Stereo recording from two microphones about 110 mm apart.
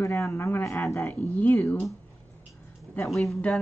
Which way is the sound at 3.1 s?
Centre (ahead or behind).